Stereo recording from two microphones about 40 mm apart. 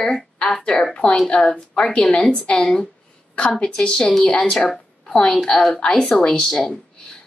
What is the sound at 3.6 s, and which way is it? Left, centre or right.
Speech, left.